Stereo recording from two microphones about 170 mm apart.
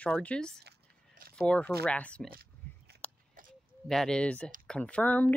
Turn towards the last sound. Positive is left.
turn(degrees=10)  # may be behind; listen again after turning